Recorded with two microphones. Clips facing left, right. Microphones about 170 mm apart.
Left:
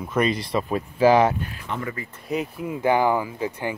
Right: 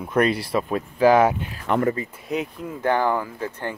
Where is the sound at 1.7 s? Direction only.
60° right (ahead or behind).